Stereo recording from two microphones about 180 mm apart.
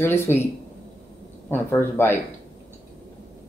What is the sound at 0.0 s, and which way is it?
Speech, 15° left (ahead or behind).